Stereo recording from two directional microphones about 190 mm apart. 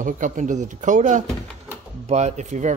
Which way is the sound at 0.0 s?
40° right (ahead or behind).